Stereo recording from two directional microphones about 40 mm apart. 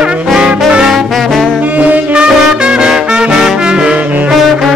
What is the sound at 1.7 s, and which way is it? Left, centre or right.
Music, right.